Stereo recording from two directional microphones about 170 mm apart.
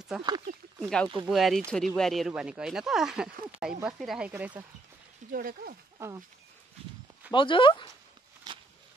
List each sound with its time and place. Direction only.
0.7 s speech: 5° left (ahead or behind)
5.3 s speech: 60° right (ahead or behind)
5.9 s speech: 15° right (ahead or behind)
7.3 s speech: 30° left (ahead or behind)
8.5 s a sound: 25° right (ahead or behind)